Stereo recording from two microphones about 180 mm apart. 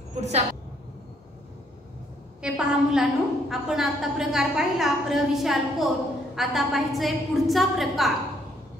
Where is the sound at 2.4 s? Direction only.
5° right (ahead or behind).